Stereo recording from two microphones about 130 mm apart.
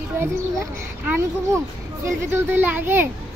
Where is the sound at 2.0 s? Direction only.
20° right (ahead or behind).